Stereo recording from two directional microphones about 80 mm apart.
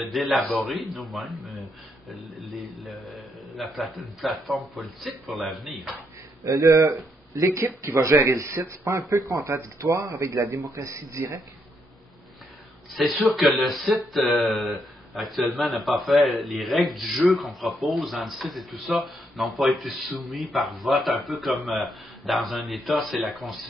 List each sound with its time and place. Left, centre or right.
0.0 s speech: centre
3.5 s speech: centre
6.4 s speech: right
13.0 s speech: centre